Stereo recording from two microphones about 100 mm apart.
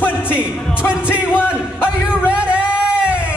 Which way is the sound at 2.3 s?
10° right (ahead or behind).